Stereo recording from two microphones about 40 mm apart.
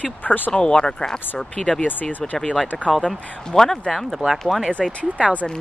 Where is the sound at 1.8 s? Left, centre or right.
Left.